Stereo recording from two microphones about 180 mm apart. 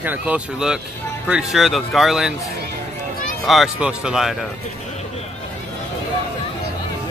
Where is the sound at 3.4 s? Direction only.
Centre (ahead or behind).